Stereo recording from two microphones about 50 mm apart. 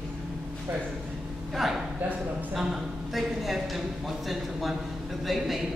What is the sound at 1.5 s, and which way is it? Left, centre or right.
A woman's voice, centre.